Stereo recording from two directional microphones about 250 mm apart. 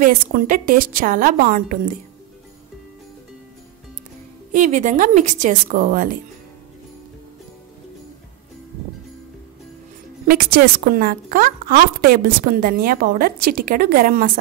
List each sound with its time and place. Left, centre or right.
0.0 s a woman's voice: right
4.5 s a woman's voice: right
10.2 s a woman's voice: right